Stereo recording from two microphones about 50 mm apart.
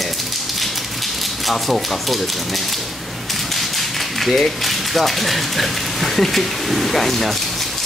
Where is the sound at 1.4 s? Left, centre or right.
Centre.